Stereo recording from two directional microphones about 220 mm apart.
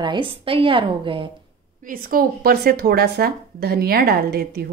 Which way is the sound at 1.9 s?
40° right (ahead or behind).